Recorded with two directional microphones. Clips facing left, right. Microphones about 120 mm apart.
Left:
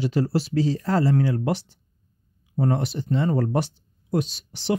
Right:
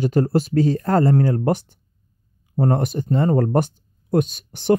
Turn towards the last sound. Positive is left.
turn(degrees=-50)  # may be behind; listen again after turning